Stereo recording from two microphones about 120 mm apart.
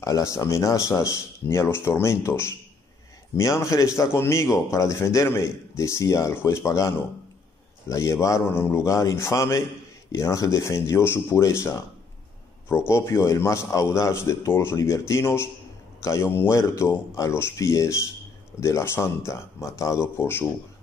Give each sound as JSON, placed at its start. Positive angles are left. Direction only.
{"t": 0.0, "sound": "a man's voice", "side_deg": 25}